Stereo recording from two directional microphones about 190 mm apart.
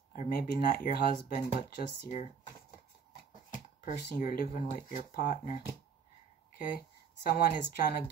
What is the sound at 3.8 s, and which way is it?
Speech, 45° left (ahead or behind).